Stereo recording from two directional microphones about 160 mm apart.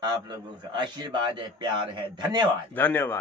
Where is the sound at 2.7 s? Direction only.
10° left (ahead or behind).